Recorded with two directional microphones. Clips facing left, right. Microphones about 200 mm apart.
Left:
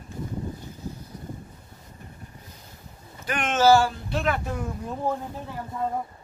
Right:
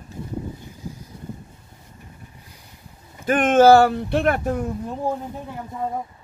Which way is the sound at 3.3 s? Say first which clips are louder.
Right 6 dB; 50° right (ahead or behind).